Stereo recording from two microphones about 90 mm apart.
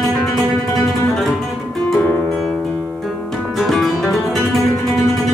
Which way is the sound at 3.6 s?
Centre (ahead or behind).